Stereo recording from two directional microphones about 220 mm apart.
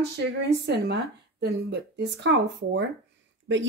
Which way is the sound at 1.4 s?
50° right (ahead or behind).